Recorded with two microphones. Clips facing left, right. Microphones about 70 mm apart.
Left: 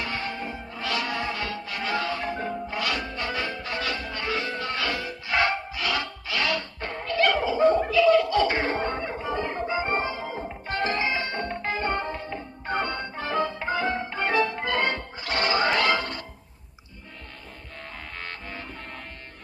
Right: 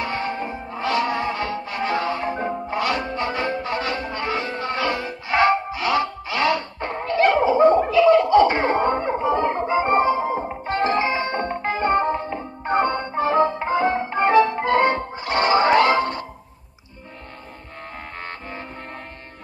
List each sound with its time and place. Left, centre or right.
0.0 s music: right